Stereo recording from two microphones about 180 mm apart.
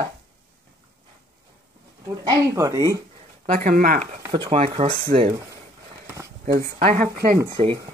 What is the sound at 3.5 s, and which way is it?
Speech, 50° right (ahead or behind).